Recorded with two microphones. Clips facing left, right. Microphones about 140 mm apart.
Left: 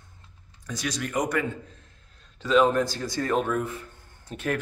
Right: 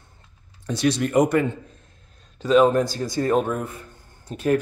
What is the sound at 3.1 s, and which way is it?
Speech, 30° right (ahead or behind).